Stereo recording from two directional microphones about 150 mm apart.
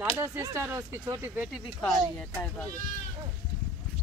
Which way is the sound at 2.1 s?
10° left (ahead or behind).